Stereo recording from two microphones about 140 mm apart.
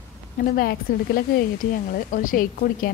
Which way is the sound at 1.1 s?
85° left.